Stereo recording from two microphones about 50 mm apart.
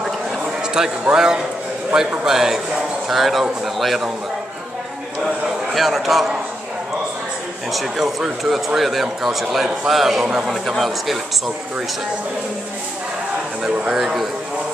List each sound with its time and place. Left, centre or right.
0.8 s a man's voice: centre
5.2 s a man's voice: centre
7.7 s a man's voice: centre
13.7 s speech: centre
13.9 s a man's voice: centre